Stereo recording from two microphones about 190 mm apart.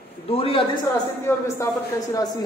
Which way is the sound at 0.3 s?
30° left (ahead or behind).